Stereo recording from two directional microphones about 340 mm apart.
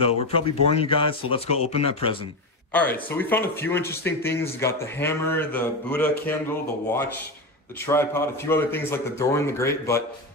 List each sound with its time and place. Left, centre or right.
0.0 s speech: centre
2.7 s speech: centre
7.8 s speech: centre